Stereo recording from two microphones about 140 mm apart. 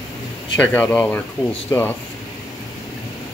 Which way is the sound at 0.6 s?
10° left (ahead or behind).